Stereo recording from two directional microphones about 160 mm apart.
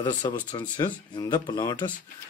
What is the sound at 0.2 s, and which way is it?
Speech, 25° left (ahead or behind).